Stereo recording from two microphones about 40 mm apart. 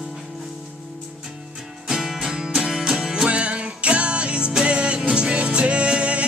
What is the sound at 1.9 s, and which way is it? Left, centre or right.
Music, centre.